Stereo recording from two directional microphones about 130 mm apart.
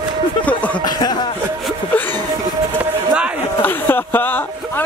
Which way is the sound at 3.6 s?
15° left (ahead or behind).